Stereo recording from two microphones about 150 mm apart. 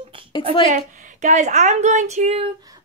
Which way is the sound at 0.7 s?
55° right (ahead or behind).